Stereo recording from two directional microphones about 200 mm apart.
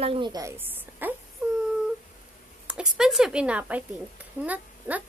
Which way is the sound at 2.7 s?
5° right (ahead or behind).